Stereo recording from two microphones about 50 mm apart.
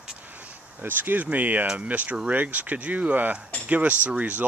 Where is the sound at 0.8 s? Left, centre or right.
Right.